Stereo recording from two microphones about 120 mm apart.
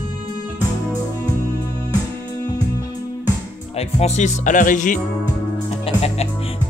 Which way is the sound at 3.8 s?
65° left (ahead or behind).